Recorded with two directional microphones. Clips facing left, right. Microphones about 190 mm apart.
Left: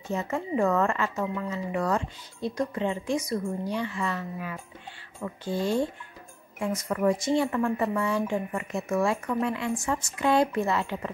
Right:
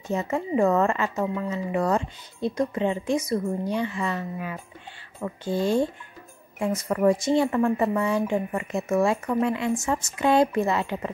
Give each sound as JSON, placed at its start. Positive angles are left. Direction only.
{"t": 0.1, "sound": "speech", "side_deg": -20}
{"t": 6.9, "sound": "speech", "side_deg": -35}